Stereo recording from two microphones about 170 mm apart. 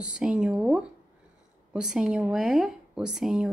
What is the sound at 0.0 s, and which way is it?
Speech, 5° right (ahead or behind).